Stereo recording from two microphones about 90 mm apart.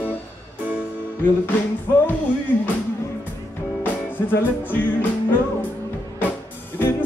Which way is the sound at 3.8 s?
20° left (ahead or behind).